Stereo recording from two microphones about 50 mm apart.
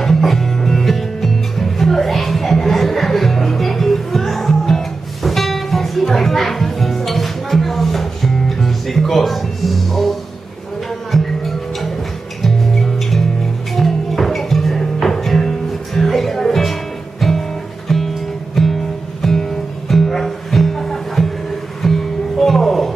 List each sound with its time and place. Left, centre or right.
0.0 s music: centre